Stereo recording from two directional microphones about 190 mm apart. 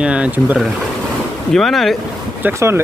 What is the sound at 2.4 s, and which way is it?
Speech, 10° right (ahead or behind).